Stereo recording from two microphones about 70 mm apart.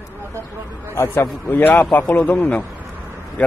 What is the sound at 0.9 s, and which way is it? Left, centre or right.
Speech, left.